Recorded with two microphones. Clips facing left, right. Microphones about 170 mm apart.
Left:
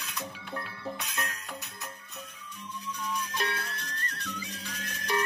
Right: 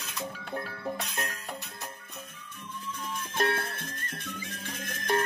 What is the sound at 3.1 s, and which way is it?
Music, 50° right (ahead or behind).